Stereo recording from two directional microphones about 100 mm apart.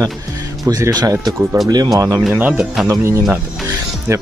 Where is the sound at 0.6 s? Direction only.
35° right (ahead or behind).